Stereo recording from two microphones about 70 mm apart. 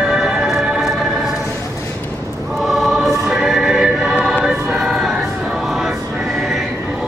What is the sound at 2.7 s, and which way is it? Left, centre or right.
Choir, centre.